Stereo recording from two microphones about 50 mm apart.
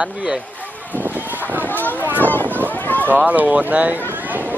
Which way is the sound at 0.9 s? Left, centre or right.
Right.